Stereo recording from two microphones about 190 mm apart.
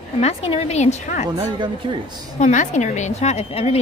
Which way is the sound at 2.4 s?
40° left (ahead or behind).